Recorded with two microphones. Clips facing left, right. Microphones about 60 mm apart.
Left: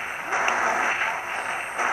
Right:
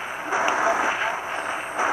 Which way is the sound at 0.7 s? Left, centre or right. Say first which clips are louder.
Right 1 dB; left.